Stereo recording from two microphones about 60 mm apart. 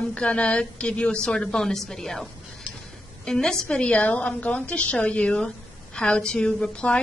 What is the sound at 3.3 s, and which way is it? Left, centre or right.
A woman's voice, centre.